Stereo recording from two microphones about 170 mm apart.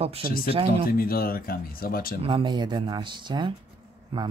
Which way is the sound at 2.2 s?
30° right (ahead or behind).